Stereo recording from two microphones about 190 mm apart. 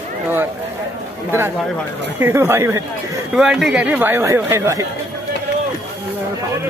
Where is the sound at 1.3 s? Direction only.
10° right (ahead or behind).